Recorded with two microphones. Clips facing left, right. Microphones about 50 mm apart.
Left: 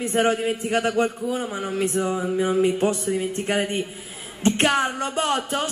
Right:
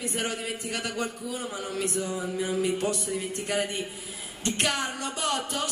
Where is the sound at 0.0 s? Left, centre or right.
Left.